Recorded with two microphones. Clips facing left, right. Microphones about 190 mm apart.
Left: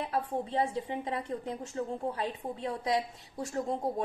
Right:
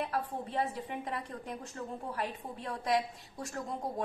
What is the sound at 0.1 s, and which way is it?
A woman's voice, 25° left (ahead or behind).